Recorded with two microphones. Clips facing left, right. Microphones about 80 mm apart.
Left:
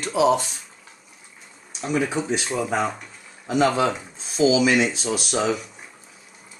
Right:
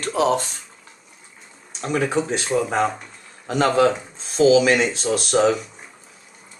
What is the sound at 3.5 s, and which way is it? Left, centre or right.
Speech, right.